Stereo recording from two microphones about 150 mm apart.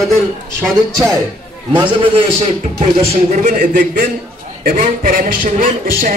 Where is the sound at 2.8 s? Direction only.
45° right (ahead or behind).